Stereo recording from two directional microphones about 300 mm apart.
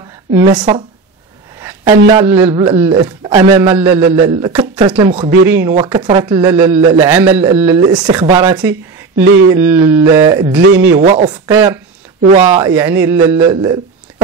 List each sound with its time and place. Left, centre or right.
0.3 s a man's voice: centre
1.9 s a man's voice: centre
11.4 s a man's voice: centre
12.7 s a man's voice: centre